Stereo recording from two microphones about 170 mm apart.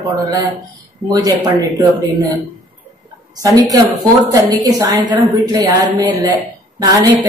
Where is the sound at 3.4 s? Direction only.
20° right (ahead or behind).